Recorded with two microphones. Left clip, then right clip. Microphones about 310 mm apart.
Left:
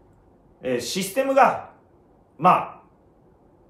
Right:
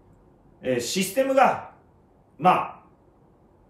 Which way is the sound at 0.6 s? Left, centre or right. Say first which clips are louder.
Even; centre.